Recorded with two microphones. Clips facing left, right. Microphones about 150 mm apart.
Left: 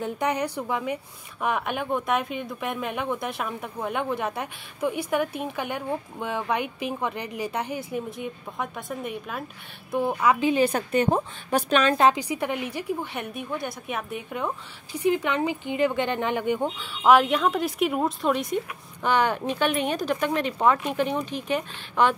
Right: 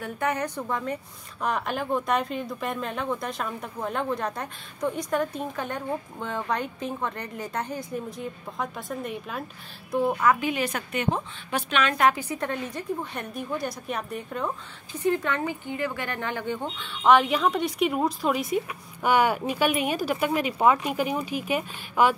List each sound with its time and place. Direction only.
0.0 s a woman's voice: 15° left (ahead or behind)
10.4 s a woman's voice: 30° left (ahead or behind)
12.2 s speech: 10° left (ahead or behind)
15.0 s speech: 15° left (ahead or behind); by 22.1 s 10° right (ahead or behind)